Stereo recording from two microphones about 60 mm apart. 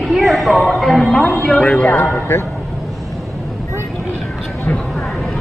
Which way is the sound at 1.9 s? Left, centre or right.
Left.